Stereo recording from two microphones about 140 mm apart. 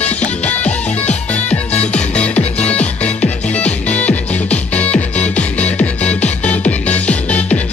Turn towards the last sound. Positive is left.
turn(degrees=10)  # may be behind; listen again after turning